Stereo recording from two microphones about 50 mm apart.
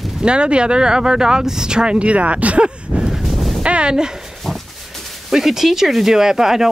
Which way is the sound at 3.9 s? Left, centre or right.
Centre.